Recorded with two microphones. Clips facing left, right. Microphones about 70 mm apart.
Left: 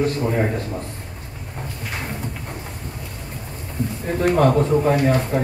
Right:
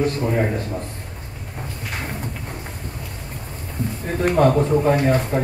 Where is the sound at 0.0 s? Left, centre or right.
Centre.